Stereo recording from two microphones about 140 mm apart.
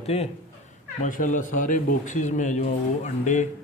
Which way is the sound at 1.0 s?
65° left (ahead or behind).